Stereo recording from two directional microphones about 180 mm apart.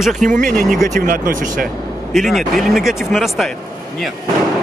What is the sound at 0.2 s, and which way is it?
Speech, 45° right (ahead or behind).